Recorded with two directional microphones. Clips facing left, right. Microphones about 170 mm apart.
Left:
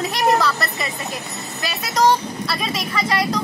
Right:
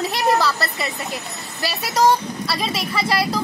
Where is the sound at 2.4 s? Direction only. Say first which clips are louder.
Right 1 dB; 30° right (ahead or behind).